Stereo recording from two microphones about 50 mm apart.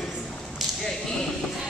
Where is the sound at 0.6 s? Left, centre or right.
Centre.